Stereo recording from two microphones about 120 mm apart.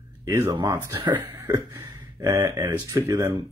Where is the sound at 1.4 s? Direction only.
25° right (ahead or behind).